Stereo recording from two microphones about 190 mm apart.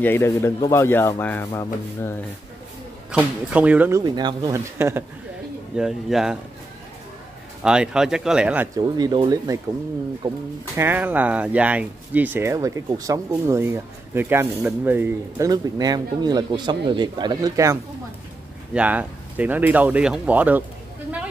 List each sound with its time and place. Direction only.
0.0 s speech: 10° left (ahead or behind)
3.5 s speech: 5° right (ahead or behind)
4.0 s speech: 20° right (ahead or behind)
5.8 s speech: centre (ahead or behind)
7.6 s speech: 5° right (ahead or behind)
8.7 s speech: 20° right (ahead or behind)
10.8 s speech: 10° right (ahead or behind)
18.7 s speech: 5° right (ahead or behind)